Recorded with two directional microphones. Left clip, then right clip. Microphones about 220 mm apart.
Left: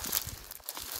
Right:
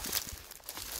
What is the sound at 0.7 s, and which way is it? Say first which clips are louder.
Crumpling: left 1 dB; 50° left (ahead or behind).